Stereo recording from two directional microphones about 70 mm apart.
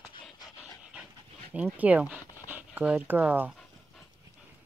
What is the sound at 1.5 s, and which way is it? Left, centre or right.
Speech, right.